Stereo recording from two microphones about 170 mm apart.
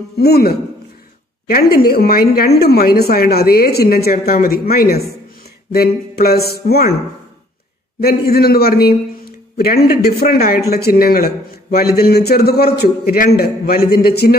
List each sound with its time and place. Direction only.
0.2 s a man's voice: 65° left (ahead or behind)
8.0 s a man's voice: 65° left (ahead or behind)